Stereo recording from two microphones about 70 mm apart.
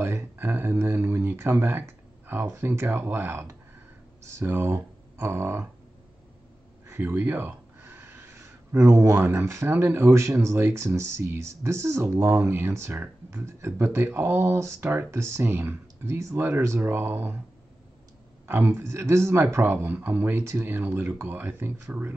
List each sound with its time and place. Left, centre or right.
0.0 s speech: right
6.9 s a sound: right
9.2 s speech: right
13.0 s speech: right
18.5 s speech: right
19.6 s speech: right